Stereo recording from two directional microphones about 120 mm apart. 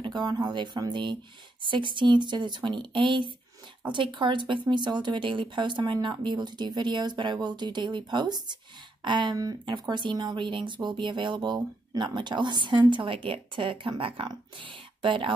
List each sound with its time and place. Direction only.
0.0 s speech: 35° right (ahead or behind)